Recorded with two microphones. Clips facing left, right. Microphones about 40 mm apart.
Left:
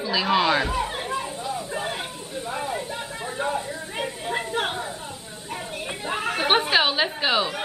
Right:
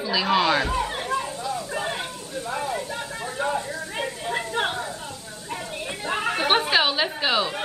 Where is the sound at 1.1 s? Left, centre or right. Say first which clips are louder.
Right 2 dB; left.